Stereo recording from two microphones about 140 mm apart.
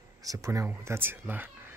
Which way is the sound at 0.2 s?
25° right (ahead or behind).